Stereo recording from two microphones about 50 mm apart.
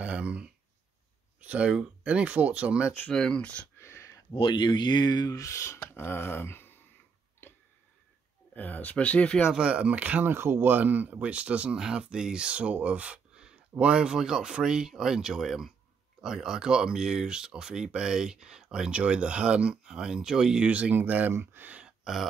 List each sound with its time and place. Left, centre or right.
0.0 s a sound: right
1.4 s speech: right
2.7 s speech: centre
3.1 s speech: centre
3.7 s a sound: left
5.3 s speech: left
8.5 s speech: left
9.6 s speech: right
10.3 s speech: right; by 18.9 s centre
18.9 s speech: right
20.9 s speech: right
21.3 s speech: right
21.8 s a sound: centre